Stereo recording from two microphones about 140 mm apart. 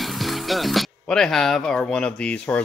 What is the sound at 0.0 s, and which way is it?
Speech, centre (ahead or behind).